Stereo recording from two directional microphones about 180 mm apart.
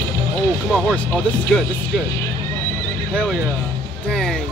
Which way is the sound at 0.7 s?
10° left (ahead or behind).